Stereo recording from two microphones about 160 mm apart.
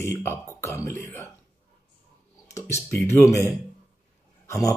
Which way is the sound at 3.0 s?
20° left (ahead or behind).